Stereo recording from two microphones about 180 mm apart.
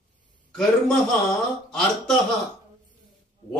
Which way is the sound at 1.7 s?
5° left (ahead or behind).